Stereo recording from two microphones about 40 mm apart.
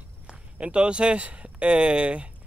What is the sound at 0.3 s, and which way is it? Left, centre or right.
Speech, right.